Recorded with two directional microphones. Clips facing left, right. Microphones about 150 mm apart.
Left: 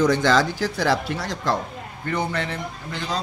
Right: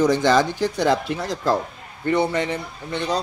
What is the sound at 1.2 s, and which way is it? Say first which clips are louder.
Speech: right 5 dB; 30° right (ahead or behind).